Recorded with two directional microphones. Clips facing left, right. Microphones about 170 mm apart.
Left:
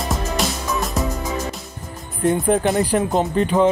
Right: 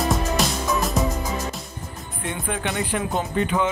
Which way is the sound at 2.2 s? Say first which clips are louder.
Left 11 dB; 40° left (ahead or behind).